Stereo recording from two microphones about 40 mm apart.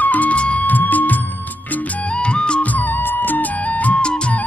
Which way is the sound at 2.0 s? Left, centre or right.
Left.